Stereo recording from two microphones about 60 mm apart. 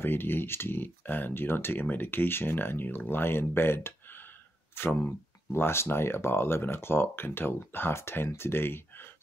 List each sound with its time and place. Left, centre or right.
0.0 s speech: left